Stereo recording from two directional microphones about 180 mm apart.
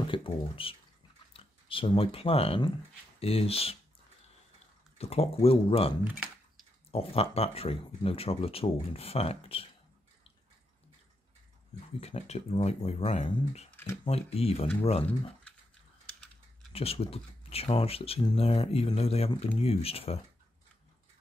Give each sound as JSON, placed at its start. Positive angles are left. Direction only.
{"t": 0.1, "sound": "speech", "side_deg": 30}
{"t": 4.9, "sound": "speech", "side_deg": 35}
{"t": 6.0, "sound": "typing", "side_deg": -10}
{"t": 6.9, "sound": "speech", "side_deg": 35}
{"t": 12.0, "sound": "speech", "side_deg": 35}
{"t": 16.7, "sound": "speech", "side_deg": 35}